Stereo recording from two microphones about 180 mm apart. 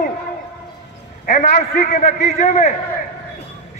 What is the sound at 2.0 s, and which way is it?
Speech, 40° left (ahead or behind).